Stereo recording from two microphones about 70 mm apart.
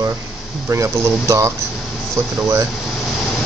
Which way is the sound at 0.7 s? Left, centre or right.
Right.